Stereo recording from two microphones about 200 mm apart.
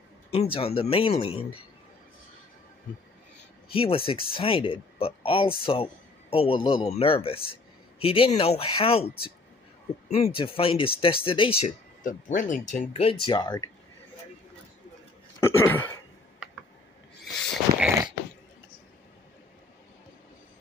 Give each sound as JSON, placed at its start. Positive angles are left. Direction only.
{"t": 0.3, "sound": "speech", "side_deg": 30}
{"t": 3.7, "sound": "speech", "side_deg": 30}
{"t": 12.0, "sound": "speech", "side_deg": 40}
{"t": 12.9, "sound": "speech", "side_deg": 25}
{"t": 15.4, "sound": "a sound", "side_deg": 10}
{"t": 17.2, "sound": "a sound", "side_deg": 0}